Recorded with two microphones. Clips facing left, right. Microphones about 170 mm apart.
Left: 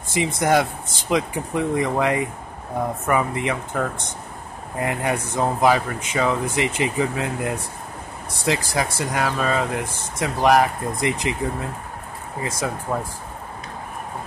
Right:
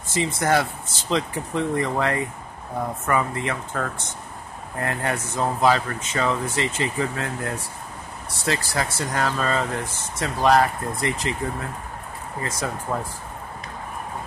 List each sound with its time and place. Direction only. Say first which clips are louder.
0.1 s speech: left 2 dB; 15° left (ahead or behind)
12.4 s speech: left 3 dB; 10° left (ahead or behind)